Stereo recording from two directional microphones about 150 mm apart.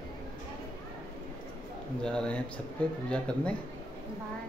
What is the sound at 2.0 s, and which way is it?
Speech, 5° left (ahead or behind).